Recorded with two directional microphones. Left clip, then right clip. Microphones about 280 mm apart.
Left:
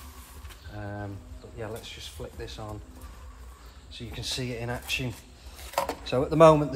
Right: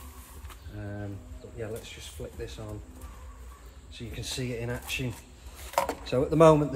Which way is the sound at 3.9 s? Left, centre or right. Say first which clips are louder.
Left 3 dB; centre.